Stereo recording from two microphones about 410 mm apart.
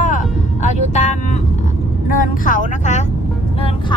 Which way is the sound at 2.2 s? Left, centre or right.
Centre.